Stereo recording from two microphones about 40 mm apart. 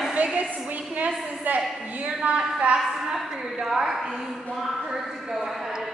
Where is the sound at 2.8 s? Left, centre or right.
Centre.